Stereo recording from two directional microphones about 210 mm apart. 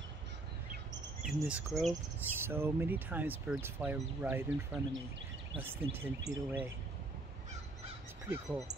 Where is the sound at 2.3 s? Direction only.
10° right (ahead or behind).